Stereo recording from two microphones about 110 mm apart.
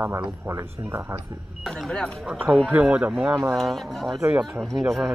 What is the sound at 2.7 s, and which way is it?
Speech, 10° right (ahead or behind).